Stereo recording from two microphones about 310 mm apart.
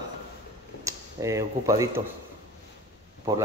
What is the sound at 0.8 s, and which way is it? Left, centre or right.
Speech, centre.